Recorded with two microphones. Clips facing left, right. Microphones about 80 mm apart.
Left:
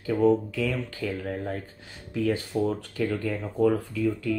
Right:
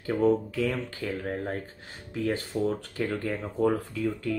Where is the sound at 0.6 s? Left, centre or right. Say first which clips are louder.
Even; right.